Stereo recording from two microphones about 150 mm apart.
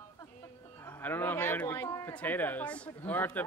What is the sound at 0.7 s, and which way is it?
Speech, 15° left (ahead or behind).